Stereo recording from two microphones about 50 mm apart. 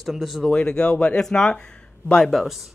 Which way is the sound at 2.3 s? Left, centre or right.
Centre.